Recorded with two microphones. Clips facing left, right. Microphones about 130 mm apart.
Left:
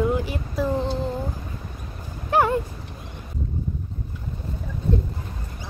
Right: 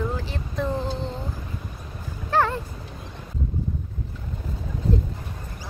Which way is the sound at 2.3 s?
15° left (ahead or behind).